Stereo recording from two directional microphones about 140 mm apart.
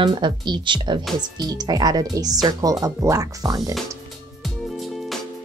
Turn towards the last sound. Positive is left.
turn(degrees=0)  # may be behind; listen again after turning